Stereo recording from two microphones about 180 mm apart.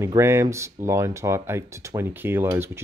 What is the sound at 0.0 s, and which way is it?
Speech, 15° right (ahead or behind).